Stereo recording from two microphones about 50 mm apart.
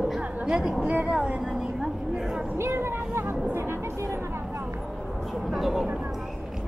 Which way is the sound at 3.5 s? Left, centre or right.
Right.